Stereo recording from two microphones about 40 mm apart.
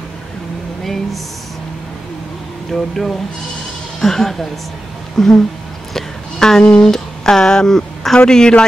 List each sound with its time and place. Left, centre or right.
2.7 s speech: centre
5.9 s music: centre
6.8 s speech: centre